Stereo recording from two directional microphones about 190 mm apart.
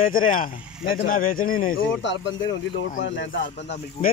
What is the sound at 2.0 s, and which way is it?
Speech, 70° left (ahead or behind).